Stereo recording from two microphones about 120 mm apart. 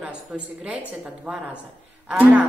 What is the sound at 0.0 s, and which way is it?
A woman's voice, 10° right (ahead or behind).